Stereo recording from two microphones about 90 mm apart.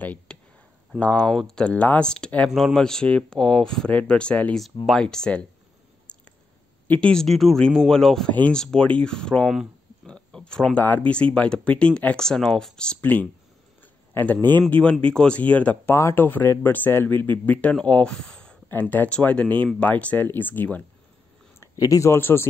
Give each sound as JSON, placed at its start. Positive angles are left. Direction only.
{"t": 0.0, "sound": "speech", "side_deg": 15}
{"t": 6.1, "sound": "a sound", "side_deg": 10}
{"t": 6.9, "sound": "speech", "side_deg": 10}
{"t": 8.3, "sound": "speech", "side_deg": 15}
{"t": 10.0, "sound": "a sound", "side_deg": 10}
{"t": 10.8, "sound": "speech", "side_deg": 15}
{"t": 21.7, "sound": "speech", "side_deg": 40}